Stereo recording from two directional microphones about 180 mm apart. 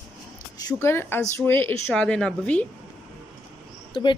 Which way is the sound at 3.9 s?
25° left (ahead or behind).